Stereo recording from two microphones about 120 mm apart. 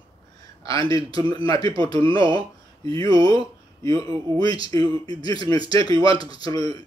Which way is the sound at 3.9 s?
40° right (ahead or behind).